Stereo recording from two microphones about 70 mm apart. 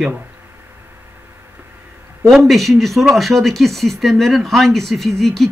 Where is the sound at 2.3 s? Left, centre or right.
Centre.